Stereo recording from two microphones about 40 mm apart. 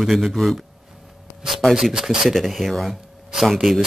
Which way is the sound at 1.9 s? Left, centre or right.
Centre.